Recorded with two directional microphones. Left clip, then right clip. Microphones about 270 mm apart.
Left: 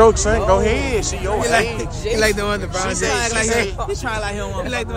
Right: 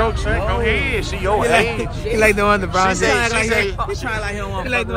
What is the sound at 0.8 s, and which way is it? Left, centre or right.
Speech, centre.